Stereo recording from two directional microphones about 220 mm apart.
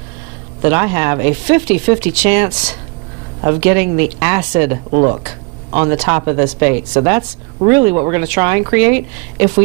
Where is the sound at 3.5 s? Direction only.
10° right (ahead or behind).